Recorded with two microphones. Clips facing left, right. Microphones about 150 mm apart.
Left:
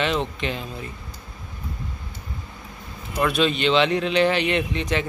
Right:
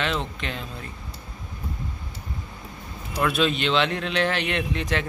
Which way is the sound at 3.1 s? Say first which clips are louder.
Left 2 dB; centre (ahead or behind).